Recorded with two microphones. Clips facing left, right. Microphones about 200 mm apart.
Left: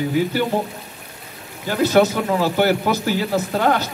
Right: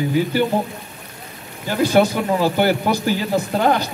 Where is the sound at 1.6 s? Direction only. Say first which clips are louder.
Even; 10° right (ahead or behind).